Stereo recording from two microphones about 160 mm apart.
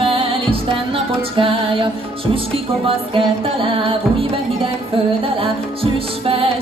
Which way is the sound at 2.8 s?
35° right (ahead or behind).